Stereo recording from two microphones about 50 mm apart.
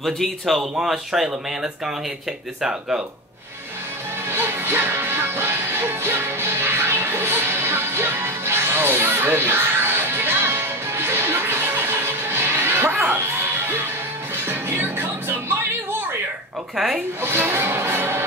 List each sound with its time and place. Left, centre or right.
0.0 s speech: centre
4.3 s music: right
14.5 s music: right
16.7 s speech: centre
17.2 s music: right